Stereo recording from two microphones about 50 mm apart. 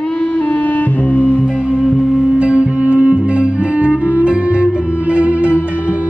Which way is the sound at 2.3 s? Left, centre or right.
Right.